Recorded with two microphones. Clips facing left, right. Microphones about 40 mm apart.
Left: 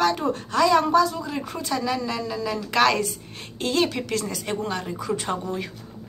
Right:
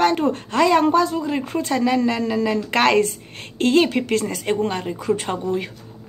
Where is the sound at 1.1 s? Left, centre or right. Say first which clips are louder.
Right 7 dB; right.